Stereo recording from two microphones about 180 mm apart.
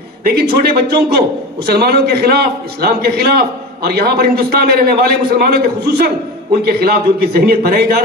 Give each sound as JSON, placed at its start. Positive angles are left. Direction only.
{"t": 0.2, "sound": "a man's voice", "side_deg": -60}